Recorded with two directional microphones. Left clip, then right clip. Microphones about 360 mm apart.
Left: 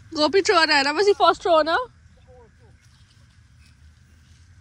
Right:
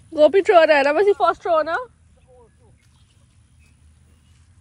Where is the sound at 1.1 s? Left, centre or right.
Centre.